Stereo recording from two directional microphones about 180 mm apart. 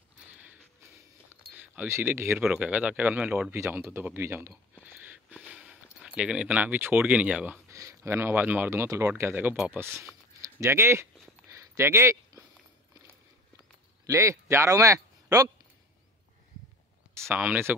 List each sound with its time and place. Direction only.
1.5 s speech: 10° right (ahead or behind)
4.9 s a sound: 10° right (ahead or behind)
7.7 s speech: 15° right (ahead or behind)
11.4 s a sound: 15° right (ahead or behind)
14.0 s speech: 15° right (ahead or behind)
17.1 s speech: 15° right (ahead or behind)